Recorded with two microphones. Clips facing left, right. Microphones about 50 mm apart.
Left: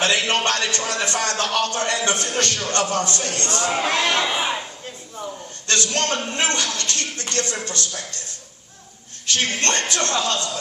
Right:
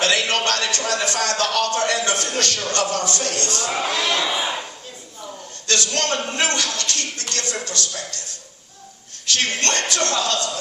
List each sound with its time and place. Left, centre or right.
0.0 s a man's voice: left
4.3 s a sound: left
5.7 s speech: left
9.3 s speech: left